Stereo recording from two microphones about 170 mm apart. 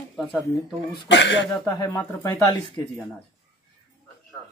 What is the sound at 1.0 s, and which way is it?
Speech, 90° left.